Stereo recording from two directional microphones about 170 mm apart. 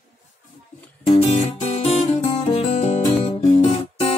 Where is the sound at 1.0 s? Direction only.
40° left (ahead or behind).